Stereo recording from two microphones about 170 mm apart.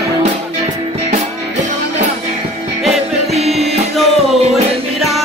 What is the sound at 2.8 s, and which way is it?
Music, 40° right (ahead or behind).